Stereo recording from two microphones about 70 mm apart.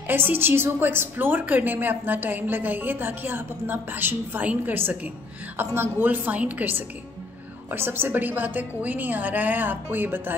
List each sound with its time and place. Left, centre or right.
0.0 s a woman's voice: right